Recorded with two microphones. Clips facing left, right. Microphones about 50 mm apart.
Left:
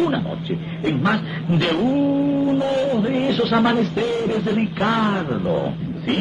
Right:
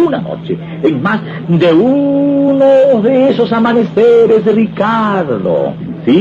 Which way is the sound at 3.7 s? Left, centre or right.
Right.